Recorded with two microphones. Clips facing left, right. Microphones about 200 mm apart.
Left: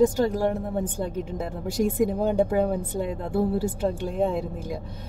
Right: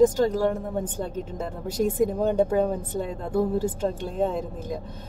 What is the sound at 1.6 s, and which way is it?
A woman's voice, 10° left (ahead or behind).